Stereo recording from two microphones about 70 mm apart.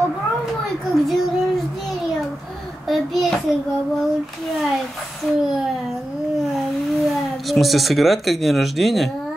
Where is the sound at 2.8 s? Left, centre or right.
Centre.